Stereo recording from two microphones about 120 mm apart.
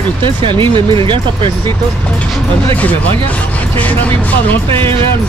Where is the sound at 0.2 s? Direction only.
45° right (ahead or behind).